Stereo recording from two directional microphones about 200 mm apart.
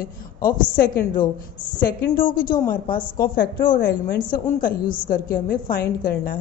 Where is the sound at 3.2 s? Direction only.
45° left (ahead or behind).